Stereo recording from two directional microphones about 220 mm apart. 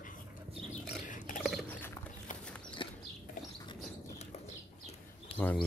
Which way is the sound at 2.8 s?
20° left (ahead or behind).